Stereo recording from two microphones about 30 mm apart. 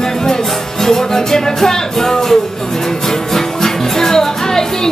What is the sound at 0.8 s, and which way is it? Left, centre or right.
Music, centre.